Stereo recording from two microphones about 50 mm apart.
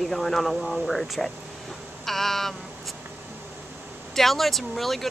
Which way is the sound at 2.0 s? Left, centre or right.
Centre.